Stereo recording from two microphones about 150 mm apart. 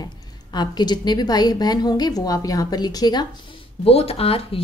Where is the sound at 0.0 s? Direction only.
30° left (ahead or behind).